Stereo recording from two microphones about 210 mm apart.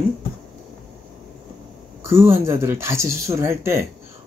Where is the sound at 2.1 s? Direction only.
10° right (ahead or behind).